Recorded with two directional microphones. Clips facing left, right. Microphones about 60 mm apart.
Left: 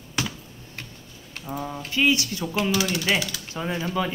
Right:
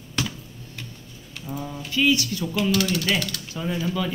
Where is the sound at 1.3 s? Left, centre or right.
Left.